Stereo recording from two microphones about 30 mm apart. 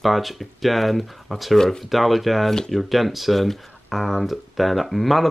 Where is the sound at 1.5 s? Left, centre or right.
Centre.